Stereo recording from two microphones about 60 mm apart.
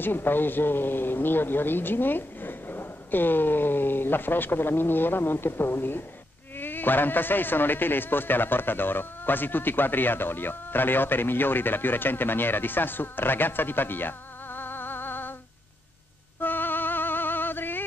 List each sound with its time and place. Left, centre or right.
0.0 s speech: left
16.3 s music: left